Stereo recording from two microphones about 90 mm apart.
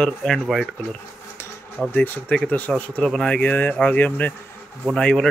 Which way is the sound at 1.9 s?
20° left (ahead or behind).